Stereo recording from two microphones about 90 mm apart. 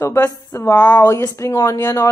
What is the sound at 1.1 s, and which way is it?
Speech, 35° left (ahead or behind).